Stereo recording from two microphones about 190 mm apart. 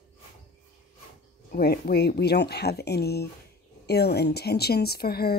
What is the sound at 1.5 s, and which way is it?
A woman's voice, 55° left (ahead or behind).